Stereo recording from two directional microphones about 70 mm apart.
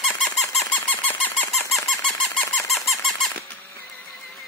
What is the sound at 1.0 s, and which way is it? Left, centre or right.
Squeak, left.